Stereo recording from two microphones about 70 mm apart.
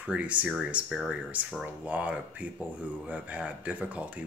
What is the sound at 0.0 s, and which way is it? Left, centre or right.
Speech, centre.